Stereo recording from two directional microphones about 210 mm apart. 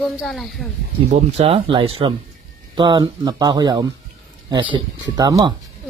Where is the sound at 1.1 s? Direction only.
30° right (ahead or behind).